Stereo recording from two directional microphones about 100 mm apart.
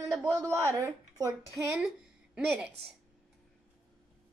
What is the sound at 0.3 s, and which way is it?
Speech, 30° right (ahead or behind).